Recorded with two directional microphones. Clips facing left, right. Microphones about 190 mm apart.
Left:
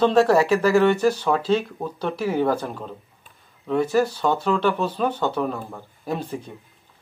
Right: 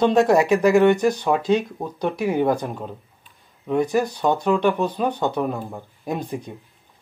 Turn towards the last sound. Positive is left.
turn(degrees=-15)  # may be behind; listen again after turning